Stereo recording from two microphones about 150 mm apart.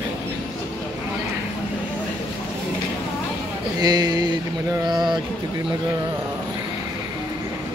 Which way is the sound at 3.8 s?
25° right (ahead or behind).